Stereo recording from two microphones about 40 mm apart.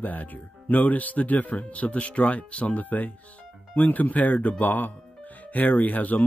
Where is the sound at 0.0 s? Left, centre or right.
Left.